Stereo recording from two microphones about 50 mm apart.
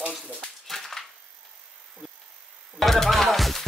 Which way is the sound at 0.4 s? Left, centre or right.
Centre.